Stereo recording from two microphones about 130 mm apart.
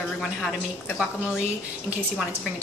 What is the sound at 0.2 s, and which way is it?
Speech, 5° left (ahead or behind).